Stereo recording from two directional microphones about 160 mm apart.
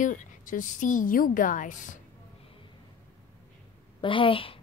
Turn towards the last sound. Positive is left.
turn(degrees=35)  # may be behind; listen again after turning